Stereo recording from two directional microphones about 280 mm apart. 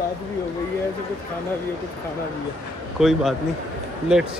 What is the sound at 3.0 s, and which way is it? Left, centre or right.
Speech, centre.